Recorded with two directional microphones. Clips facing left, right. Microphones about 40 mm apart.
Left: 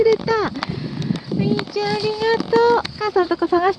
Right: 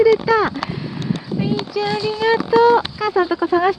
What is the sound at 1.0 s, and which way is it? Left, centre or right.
Speech, centre.